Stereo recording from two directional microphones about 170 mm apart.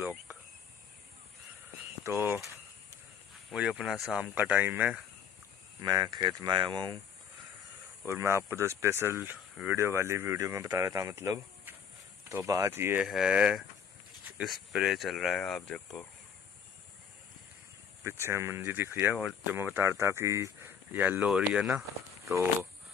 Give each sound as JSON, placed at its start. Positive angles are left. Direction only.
{"t": 0.0, "sound": "cricket", "side_deg": -10}
{"t": 2.0, "sound": "speech", "side_deg": -15}
{"t": 3.4, "sound": "speech", "side_deg": -5}
{"t": 5.8, "sound": "speech", "side_deg": -25}
{"t": 8.1, "sound": "speech", "side_deg": -15}
{"t": 13.0, "sound": "speech", "side_deg": -5}
{"t": 18.0, "sound": "speech", "side_deg": -15}